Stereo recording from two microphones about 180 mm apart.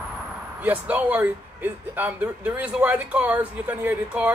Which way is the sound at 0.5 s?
10° right (ahead or behind).